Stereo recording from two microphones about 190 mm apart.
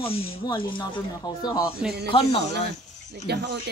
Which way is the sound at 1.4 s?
20° left (ahead or behind).